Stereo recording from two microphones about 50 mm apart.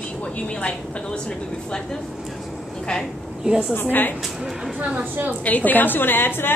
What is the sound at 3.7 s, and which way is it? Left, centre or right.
Speech, left.